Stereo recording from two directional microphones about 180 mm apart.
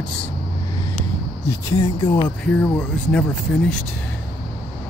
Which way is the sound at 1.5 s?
15° left (ahead or behind).